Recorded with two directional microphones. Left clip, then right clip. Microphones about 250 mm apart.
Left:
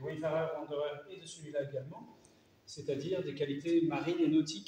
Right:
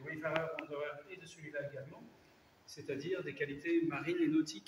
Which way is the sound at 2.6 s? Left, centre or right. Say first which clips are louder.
Left 4 dB; centre.